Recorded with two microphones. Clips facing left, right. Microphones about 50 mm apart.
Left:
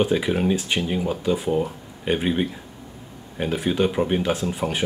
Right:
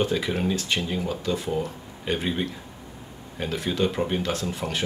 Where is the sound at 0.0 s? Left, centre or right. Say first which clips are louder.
Left 4 dB; centre.